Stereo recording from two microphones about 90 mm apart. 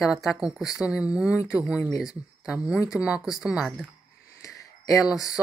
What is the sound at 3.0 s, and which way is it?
Speech, 10° right (ahead or behind).